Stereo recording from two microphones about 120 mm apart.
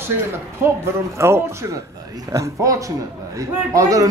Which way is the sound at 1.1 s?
20° right (ahead or behind).